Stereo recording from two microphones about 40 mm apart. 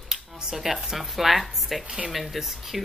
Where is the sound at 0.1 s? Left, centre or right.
Centre.